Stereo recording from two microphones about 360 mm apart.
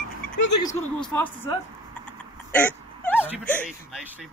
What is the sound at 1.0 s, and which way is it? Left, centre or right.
Speech, centre.